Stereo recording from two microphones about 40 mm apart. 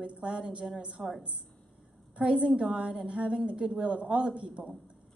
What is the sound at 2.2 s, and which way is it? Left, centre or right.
A woman's voice, right.